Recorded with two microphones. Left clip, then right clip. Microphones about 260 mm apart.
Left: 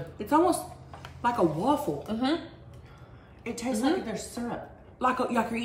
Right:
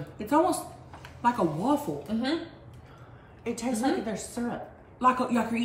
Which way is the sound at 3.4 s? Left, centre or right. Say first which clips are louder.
Even; centre.